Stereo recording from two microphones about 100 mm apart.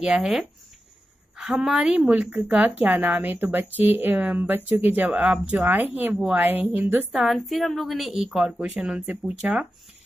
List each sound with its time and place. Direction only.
0.0 s a woman's voice: 10° right (ahead or behind)
7.1 s a woman's voice: centre (ahead or behind)